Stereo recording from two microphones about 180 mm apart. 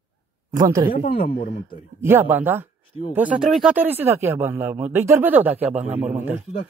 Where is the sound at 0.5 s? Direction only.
20° right (ahead or behind).